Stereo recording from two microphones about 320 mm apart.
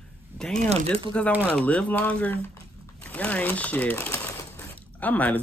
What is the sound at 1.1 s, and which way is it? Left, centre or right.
Speech, centre.